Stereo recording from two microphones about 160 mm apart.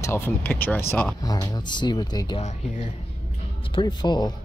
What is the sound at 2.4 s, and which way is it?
Speech, 45° left (ahead or behind).